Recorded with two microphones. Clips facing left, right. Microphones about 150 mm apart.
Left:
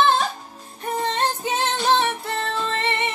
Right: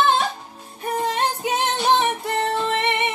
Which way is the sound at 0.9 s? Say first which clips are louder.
Right 1 dB; 10° right (ahead or behind).